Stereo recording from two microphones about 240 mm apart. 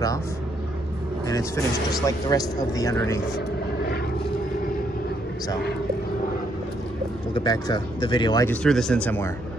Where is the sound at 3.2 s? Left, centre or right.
Left.